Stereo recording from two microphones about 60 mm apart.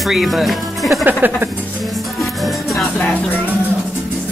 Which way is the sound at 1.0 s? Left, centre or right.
Right.